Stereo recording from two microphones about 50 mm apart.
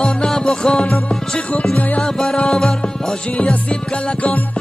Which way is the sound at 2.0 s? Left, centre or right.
Centre.